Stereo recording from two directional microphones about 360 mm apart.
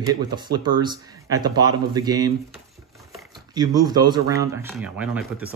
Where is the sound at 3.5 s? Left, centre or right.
Centre.